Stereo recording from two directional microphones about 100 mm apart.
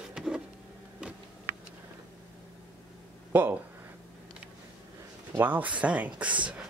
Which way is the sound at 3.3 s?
20° right (ahead or behind).